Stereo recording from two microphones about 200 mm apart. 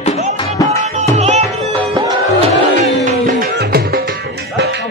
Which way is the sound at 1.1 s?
35° right (ahead or behind).